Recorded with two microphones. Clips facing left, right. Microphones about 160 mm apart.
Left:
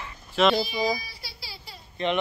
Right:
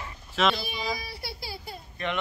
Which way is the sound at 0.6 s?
60° right (ahead or behind).